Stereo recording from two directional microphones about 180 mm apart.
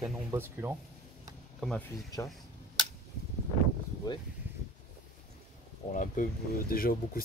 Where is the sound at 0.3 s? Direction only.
15° right (ahead or behind).